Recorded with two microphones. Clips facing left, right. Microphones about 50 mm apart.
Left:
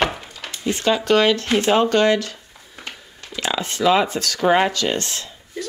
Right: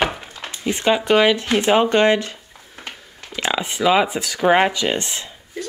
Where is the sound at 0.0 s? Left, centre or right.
Centre.